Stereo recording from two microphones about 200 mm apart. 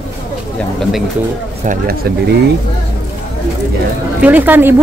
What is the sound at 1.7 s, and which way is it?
Speech, 50° right (ahead or behind).